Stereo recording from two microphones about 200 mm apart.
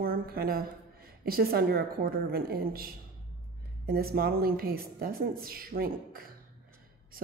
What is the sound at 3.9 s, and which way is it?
A woman's voice, 50° right (ahead or behind).